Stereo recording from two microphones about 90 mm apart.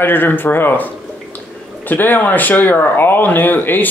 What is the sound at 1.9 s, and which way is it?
Speech, 20° left (ahead or behind).